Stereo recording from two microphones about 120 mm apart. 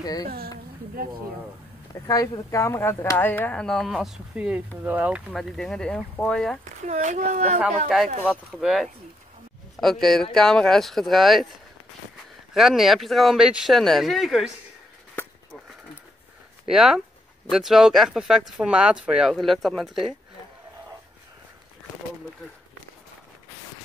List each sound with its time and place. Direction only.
0.0 s speech: 35° left (ahead or behind)
2.0 s speech: 30° left (ahead or behind); by 5.2 s 15° right (ahead or behind)
5.3 s speech: 5° left (ahead or behind)
6.6 s a child's voice: 90° right
8.3 s speech: 5° right (ahead or behind)
12.5 s speech: centre (ahead or behind)
16.6 s speech: 5° right (ahead or behind)